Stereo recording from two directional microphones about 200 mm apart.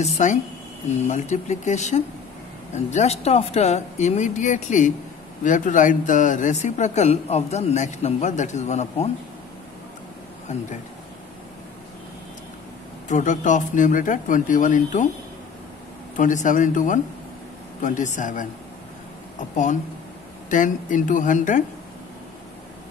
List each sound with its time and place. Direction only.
0.0 s speech: 35° left (ahead or behind)
13.1 s speech: 40° left (ahead or behind)
16.2 s speech: 40° left (ahead or behind)
19.5 s speech: 40° left (ahead or behind)